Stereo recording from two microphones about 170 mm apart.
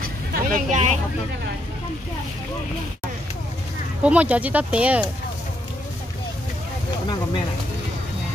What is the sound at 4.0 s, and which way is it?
Speech, 10° right (ahead or behind).